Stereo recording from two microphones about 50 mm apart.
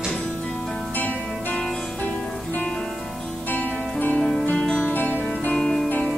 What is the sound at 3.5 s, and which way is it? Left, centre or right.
Music, left.